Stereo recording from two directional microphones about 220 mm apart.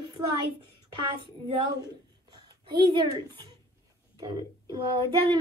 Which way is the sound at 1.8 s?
20° right (ahead or behind).